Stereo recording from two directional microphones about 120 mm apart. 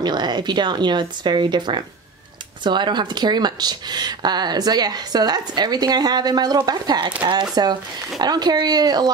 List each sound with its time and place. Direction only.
0.0 s speech: 35° right (ahead or behind)